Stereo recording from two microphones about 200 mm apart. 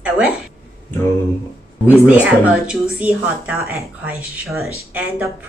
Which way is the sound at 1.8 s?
5° right (ahead or behind).